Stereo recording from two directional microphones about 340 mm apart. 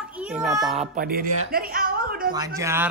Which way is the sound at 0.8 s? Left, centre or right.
Right.